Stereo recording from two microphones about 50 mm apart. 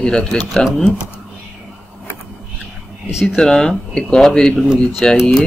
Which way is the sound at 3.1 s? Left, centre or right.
Centre.